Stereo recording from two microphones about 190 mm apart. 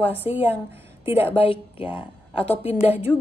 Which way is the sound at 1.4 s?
30° left (ahead or behind).